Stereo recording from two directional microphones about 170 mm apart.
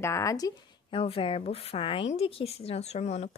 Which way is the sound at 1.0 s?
35° left (ahead or behind).